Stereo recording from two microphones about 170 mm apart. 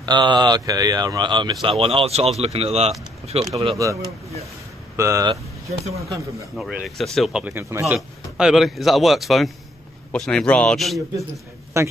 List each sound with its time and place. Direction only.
0.0 s speech: 25° right (ahead or behind)
3.6 s speech: 20° right (ahead or behind)
5.3 s speech: 40° right (ahead or behind)
5.9 s speech: 20° right (ahead or behind)
6.5 s speech: centre (ahead or behind)
11.7 s speech: 15° right (ahead or behind)